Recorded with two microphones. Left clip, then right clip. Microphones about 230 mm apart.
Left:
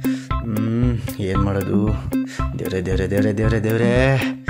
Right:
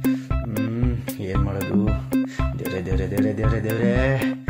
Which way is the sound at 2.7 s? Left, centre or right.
Left.